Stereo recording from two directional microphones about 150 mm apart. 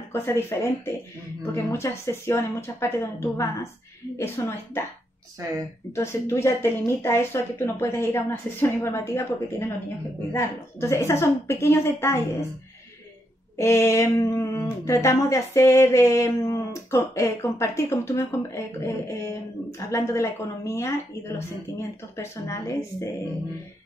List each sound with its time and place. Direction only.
0.1 s speech: 15° left (ahead or behind)
5.9 s speech: 20° left (ahead or behind)
13.6 s speech: 20° left (ahead or behind)